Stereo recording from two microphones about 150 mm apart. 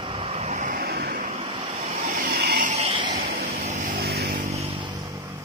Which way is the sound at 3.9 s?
90° right.